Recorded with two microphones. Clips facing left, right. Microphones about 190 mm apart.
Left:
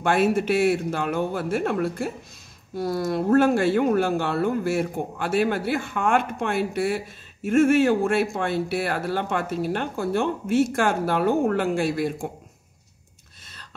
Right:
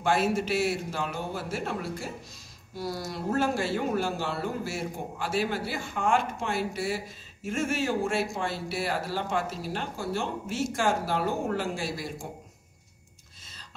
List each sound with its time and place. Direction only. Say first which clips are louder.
0.0 s speech: left 5 dB; 60° left (ahead or behind)